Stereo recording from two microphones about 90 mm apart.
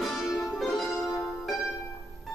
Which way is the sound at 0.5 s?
Centre (ahead or behind).